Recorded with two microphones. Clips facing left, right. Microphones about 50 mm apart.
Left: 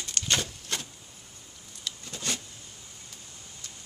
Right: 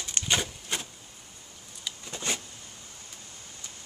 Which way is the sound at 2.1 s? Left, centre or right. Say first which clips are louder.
Right 2 dB; right.